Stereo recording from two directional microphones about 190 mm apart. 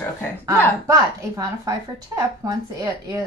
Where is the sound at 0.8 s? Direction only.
20° right (ahead or behind).